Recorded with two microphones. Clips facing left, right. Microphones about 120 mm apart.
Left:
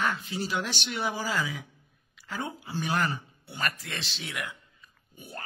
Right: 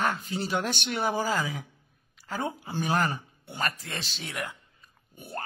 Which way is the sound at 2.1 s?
40° right (ahead or behind).